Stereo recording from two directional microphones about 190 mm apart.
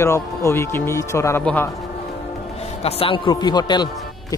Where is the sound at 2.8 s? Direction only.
30° left (ahead or behind).